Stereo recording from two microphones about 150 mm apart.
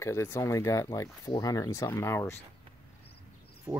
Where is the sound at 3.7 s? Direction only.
5° right (ahead or behind).